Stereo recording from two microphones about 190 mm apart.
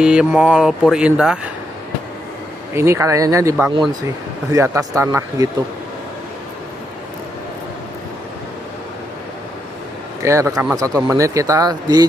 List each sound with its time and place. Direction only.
0.0 s speech: 5° right (ahead or behind)
2.7 s a man's voice: 15° right (ahead or behind)
10.2 s a man's voice: 15° right (ahead or behind)